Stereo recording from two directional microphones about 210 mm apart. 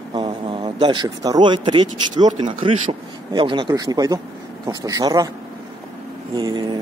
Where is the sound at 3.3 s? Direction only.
25° right (ahead or behind).